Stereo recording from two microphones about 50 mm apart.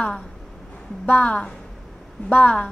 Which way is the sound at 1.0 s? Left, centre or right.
Left.